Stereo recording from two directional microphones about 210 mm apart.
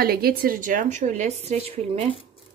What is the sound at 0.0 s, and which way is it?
A woman's voice, 45° right (ahead or behind).